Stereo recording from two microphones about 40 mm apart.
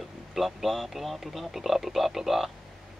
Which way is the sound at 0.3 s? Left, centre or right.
Centre.